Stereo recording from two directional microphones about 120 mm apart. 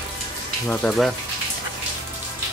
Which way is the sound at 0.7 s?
5° left (ahead or behind).